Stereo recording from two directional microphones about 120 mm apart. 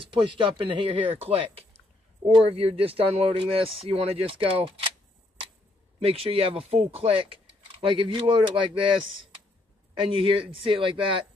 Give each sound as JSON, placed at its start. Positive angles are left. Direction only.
{"t": 0.0, "sound": "speech", "side_deg": -45}
{"t": 5.9, "sound": "speech", "side_deg": -55}
{"t": 9.9, "sound": "speech", "side_deg": -50}